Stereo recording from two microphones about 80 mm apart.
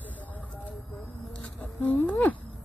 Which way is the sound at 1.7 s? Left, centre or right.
Left.